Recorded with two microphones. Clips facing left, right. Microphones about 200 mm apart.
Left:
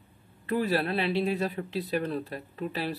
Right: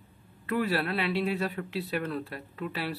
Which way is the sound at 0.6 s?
20° left (ahead or behind).